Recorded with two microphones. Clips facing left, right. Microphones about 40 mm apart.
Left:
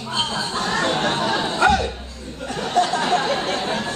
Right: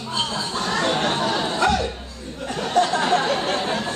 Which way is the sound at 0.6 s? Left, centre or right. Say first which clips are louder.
Even; centre.